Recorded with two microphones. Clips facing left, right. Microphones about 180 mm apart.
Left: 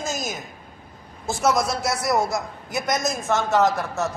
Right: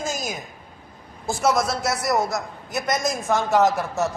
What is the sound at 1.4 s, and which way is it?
A man's voice, 5° right (ahead or behind).